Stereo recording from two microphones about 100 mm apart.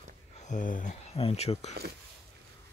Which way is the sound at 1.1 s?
80° left.